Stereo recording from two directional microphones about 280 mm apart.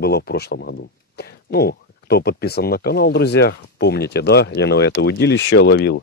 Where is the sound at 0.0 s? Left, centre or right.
Left.